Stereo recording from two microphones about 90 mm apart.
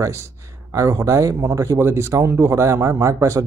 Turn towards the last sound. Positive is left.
turn(degrees=-35)  # may be behind; listen again after turning